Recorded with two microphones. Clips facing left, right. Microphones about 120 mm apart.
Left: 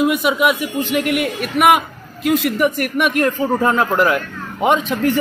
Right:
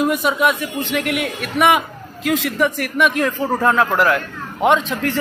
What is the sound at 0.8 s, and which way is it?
Speech, 90° right.